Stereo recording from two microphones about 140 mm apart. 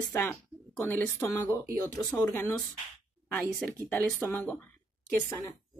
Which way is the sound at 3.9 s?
15° left (ahead or behind).